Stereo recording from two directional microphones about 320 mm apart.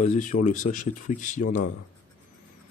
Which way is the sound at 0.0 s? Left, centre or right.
Left.